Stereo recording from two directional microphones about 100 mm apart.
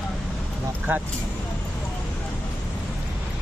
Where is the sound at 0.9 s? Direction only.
20° right (ahead or behind).